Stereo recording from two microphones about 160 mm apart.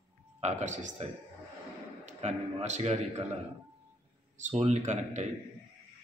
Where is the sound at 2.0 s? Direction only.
45° right (ahead or behind).